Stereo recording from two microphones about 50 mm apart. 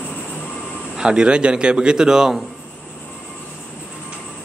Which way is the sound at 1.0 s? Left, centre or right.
Centre.